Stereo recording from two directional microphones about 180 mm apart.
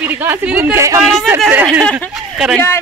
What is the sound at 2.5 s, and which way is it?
Speech, 15° left (ahead or behind).